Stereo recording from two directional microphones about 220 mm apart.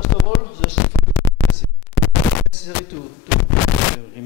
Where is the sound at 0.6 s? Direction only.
20° left (ahead or behind).